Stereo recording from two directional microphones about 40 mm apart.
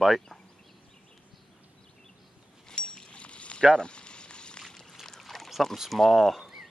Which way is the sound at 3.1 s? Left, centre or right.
Left.